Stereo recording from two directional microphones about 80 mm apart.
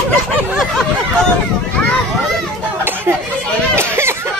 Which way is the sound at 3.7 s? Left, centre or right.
Right.